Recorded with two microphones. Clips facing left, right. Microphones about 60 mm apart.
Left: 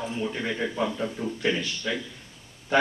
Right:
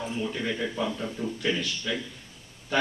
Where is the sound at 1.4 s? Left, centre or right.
Left.